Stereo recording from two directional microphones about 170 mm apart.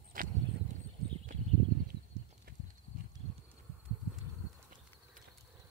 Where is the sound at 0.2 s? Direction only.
55° right (ahead or behind).